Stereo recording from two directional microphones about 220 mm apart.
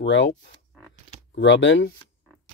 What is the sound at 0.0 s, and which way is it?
Speech, 55° left (ahead or behind).